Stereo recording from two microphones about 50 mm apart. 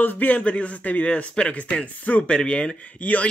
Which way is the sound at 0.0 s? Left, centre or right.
Left.